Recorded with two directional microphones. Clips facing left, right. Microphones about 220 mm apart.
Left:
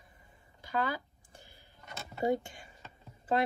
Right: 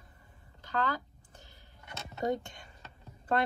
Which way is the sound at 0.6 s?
10° left (ahead or behind).